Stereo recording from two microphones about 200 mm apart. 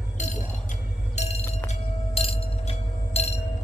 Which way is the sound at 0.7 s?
35° left (ahead or behind).